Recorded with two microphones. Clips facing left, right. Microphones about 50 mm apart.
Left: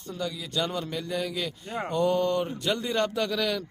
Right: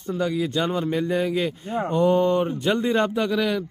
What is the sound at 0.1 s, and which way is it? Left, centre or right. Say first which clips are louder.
Speech: right 8 dB; right.